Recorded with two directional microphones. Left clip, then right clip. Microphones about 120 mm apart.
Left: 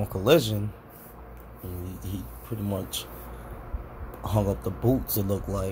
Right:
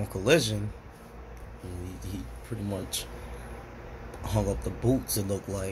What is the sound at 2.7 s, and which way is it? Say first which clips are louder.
Speech: left 2 dB; 25° left (ahead or behind).